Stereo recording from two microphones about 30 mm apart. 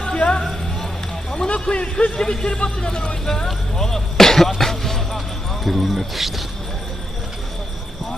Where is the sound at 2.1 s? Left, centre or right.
Left.